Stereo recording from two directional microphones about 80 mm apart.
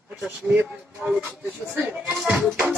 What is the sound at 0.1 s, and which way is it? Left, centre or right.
Speech, centre.